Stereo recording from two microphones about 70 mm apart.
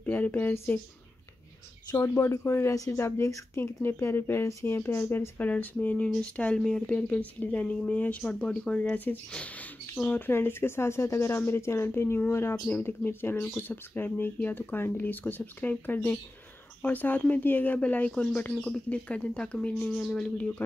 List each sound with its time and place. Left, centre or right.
0.0 s speech: left
2.0 s speech: left
2.7 s speech: left
3.9 s speech: left
8.2 s speech: centre
10.0 s speech: left
20.0 s speech: centre
20.3 s speech: centre